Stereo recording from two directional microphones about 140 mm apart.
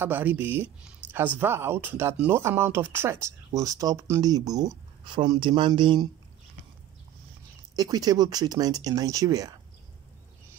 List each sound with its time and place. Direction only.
0.0 s speech: 10° right (ahead or behind); by 6.0 s 35° right (ahead or behind)
7.7 s speech: 25° right (ahead or behind)